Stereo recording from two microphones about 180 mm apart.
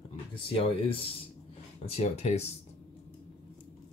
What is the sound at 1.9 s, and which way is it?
Speech, 35° left (ahead or behind).